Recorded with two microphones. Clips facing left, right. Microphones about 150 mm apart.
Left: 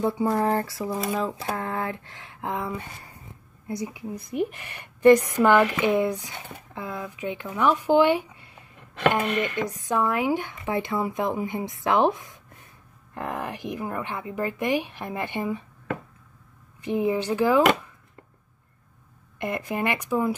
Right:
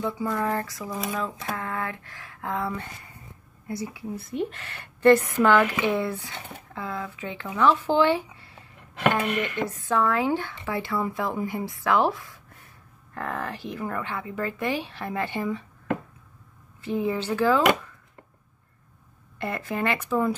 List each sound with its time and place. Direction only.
0.0 s a woman's voice: 30° left (ahead or behind)
9.6 s a woman's voice: 15° left (ahead or behind)
16.8 s a woman's voice: 15° left (ahead or behind)
19.3 s a woman's voice: 15° left (ahead or behind)